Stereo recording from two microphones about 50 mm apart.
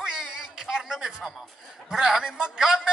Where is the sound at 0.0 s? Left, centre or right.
Centre.